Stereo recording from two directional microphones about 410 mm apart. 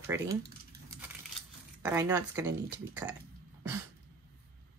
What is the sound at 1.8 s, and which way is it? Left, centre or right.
Speech, centre.